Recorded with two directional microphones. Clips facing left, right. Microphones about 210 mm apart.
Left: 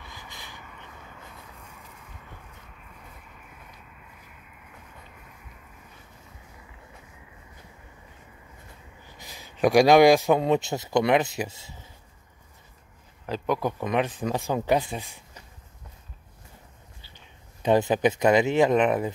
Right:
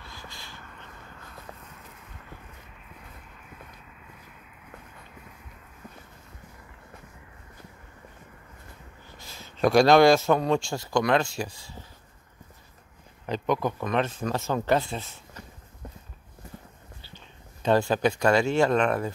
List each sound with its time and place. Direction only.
0.0 s a sound: 15° left (ahead or behind)
9.2 s speech: 15° left (ahead or behind)
13.3 s speech: 10° left (ahead or behind)
17.0 s speech: 15° left (ahead or behind)